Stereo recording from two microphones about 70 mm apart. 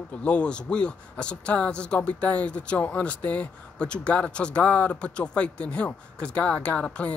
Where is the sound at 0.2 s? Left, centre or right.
Centre.